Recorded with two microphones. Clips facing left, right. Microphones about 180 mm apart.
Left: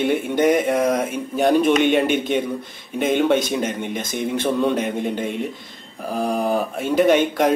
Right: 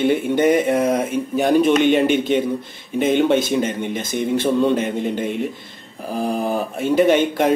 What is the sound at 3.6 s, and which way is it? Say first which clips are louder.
Speech: right 2 dB; 55° left (ahead or behind).